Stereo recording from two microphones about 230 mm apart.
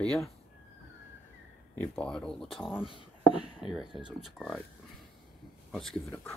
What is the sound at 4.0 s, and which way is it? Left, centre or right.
Speech, centre.